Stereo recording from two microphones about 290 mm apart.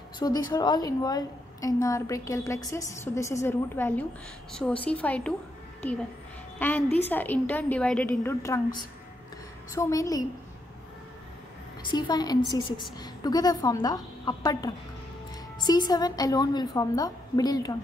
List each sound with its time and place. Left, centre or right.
0.2 s a woman's voice: centre
6.6 s a woman's voice: centre
9.7 s a woman's voice: centre
11.9 s a woman's voice: centre